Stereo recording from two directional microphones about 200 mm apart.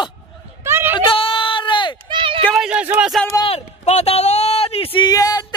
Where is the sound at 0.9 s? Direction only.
25° left (ahead or behind).